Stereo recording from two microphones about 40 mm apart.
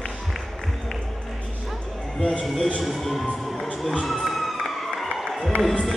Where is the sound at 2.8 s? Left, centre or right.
Centre.